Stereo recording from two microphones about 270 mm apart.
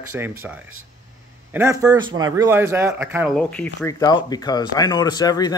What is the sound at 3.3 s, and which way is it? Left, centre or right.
Speech, centre.